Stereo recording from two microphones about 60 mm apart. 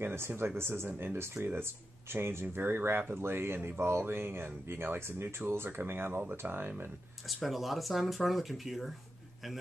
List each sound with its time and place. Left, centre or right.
0.0 s speech: right
7.4 s speech: centre